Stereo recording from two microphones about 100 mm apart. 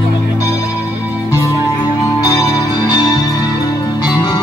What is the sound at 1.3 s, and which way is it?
Music, 35° left (ahead or behind).